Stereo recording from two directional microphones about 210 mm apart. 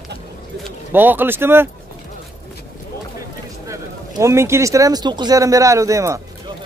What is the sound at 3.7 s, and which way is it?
Speech, 15° right (ahead or behind).